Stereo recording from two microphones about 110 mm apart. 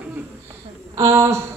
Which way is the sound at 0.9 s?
25° right (ahead or behind).